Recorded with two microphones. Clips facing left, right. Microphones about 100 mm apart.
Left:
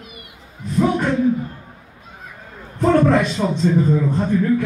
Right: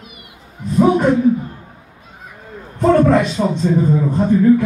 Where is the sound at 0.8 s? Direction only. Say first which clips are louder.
Right 5 dB; 20° right (ahead or behind).